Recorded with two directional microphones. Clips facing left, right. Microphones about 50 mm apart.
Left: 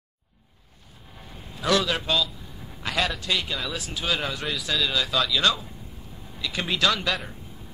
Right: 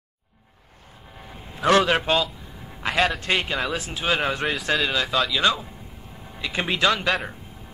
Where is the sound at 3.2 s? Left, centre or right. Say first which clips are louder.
Right 4 dB; right.